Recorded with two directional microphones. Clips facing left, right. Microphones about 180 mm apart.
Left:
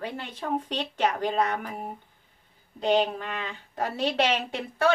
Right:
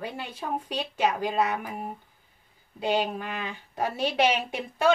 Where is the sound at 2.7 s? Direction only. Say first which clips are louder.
Left 3 dB; 10° right (ahead or behind).